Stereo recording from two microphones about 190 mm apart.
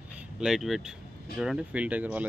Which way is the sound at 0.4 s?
Centre (ahead or behind).